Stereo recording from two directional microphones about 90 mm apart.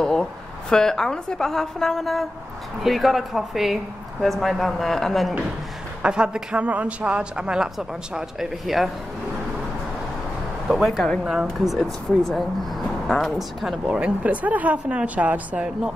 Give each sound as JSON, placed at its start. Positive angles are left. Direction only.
{"t": 0.0, "sound": "a woman's voice", "side_deg": 5}
{"t": 6.0, "sound": "a man's voice", "side_deg": -10}
{"t": 10.7, "sound": "a woman's voice", "side_deg": 0}
{"t": 13.9, "sound": "a man's voice", "side_deg": -15}